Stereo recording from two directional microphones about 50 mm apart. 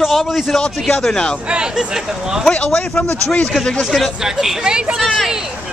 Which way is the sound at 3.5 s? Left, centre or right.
Centre.